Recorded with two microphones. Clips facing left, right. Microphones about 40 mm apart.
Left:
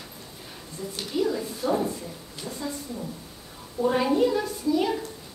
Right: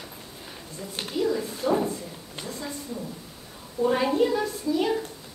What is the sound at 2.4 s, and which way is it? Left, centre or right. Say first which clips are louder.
Speech: left 2 dB; centre.